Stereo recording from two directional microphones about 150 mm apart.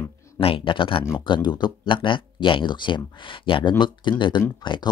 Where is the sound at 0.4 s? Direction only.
35° left (ahead or behind).